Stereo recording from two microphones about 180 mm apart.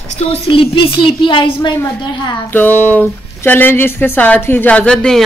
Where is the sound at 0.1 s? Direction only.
35° left (ahead or behind).